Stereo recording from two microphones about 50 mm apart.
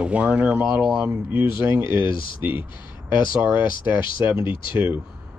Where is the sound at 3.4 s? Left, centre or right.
Right.